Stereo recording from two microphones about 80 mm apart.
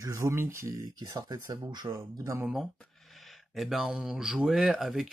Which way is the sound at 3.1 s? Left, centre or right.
Centre.